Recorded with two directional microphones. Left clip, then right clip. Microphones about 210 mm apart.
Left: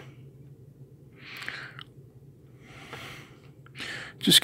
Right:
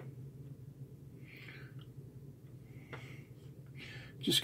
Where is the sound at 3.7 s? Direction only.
45° left (ahead or behind).